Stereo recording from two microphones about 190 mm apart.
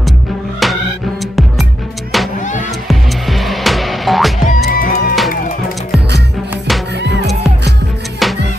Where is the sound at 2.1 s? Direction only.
Centre (ahead or behind).